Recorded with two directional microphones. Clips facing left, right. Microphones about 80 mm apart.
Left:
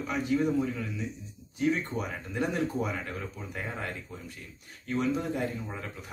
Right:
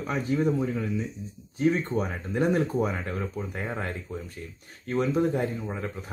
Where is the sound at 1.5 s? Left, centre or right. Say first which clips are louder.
Right 4 dB; right.